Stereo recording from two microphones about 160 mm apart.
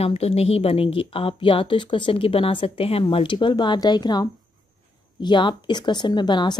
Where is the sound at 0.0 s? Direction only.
40° left (ahead or behind).